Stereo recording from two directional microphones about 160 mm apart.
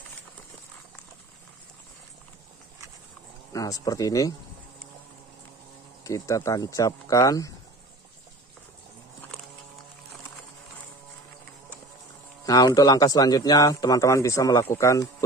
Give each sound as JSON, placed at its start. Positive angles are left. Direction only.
{"t": 3.5, "sound": "a man's voice", "side_deg": 20}
{"t": 6.0, "sound": "a man's voice", "side_deg": 20}
{"t": 12.4, "sound": "a man's voice", "side_deg": 25}